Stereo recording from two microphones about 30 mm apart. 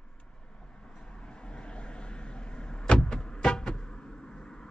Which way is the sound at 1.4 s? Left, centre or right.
Left.